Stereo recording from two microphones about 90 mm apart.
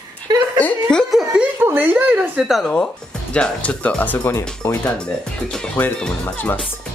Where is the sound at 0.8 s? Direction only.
5° left (ahead or behind).